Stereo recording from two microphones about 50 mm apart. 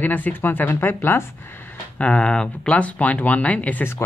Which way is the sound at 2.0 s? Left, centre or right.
Left.